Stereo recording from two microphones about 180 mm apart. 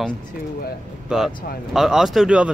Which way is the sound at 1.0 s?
5° right (ahead or behind).